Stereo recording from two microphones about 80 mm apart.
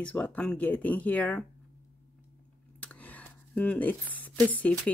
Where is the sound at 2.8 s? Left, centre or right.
Centre.